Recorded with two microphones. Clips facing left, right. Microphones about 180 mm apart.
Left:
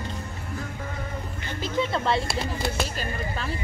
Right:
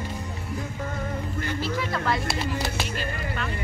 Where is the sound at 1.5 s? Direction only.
20° left (ahead or behind).